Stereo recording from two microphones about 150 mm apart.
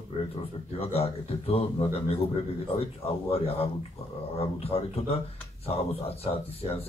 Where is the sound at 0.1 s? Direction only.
35° left (ahead or behind).